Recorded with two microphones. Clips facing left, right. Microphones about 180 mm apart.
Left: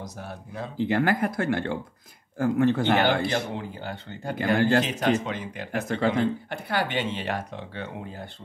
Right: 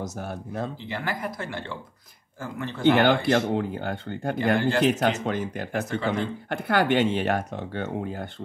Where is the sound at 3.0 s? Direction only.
55° right (ahead or behind).